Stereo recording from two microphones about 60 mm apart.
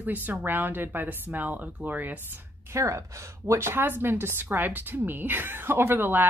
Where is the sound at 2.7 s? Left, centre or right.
Right.